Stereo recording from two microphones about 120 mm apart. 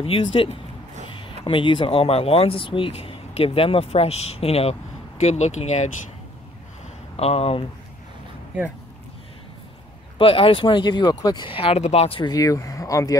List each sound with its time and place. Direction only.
0.0 s speech: 50° left (ahead or behind)
5.2 s speech: 70° left (ahead or behind)
7.2 s speech: 55° left (ahead or behind)
10.1 s speech: 50° left (ahead or behind)
12.3 s speech: 30° left (ahead or behind)